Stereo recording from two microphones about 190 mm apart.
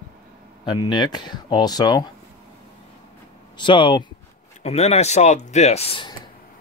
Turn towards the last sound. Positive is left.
turn(degrees=25)  # may be behind; listen again after turning